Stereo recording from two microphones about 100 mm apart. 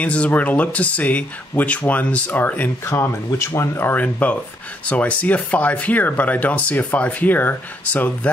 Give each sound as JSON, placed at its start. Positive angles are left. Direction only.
{"t": 0.0, "sound": "speech", "side_deg": 15}